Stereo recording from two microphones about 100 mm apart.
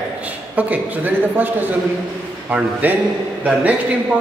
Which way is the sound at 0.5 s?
15° right (ahead or behind).